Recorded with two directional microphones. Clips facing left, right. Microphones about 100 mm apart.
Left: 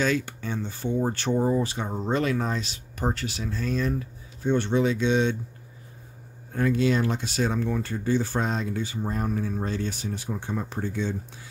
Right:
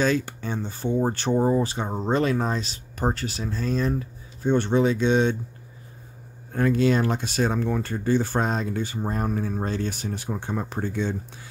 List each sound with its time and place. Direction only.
0.0 s speech: 35° right (ahead or behind)
6.5 s speech: 45° right (ahead or behind)